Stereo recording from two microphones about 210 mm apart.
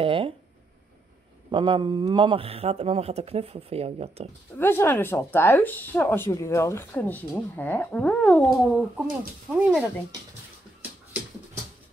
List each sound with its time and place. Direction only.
0.0 s speech: 25° right (ahead or behind)
1.5 s speech: 25° right (ahead or behind)
4.6 s speech: 10° left (ahead or behind); by 9.8 s 5° right (ahead or behind)